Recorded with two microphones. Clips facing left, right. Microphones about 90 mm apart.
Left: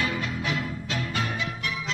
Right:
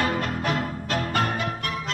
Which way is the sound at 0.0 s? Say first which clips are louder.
Right 4 dB; 45° right (ahead or behind).